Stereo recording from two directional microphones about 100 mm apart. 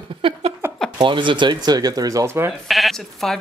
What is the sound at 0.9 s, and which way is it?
Speech, 55° right (ahead or behind).